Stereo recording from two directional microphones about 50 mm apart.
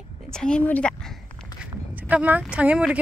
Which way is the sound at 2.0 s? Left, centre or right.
Right.